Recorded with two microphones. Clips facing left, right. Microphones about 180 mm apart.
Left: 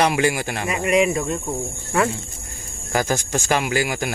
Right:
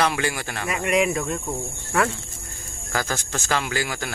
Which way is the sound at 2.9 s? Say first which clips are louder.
Left 6 dB; 15° left (ahead or behind).